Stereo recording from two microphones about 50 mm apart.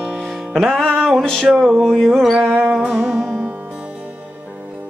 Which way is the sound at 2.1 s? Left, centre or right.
Centre.